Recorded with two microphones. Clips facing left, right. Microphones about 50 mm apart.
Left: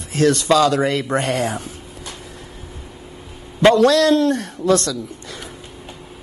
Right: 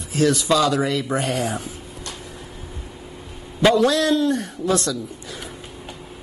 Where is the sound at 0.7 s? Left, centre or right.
Left.